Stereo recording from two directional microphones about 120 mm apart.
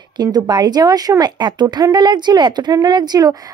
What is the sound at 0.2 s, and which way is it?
A woman's voice, 35° right (ahead or behind).